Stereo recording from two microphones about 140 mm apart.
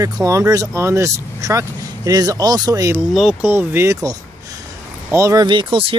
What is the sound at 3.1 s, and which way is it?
Speech, centre (ahead or behind).